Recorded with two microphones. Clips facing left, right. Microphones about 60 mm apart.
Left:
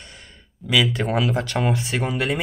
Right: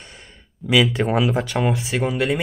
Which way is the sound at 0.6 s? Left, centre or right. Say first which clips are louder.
Right 3 dB; centre.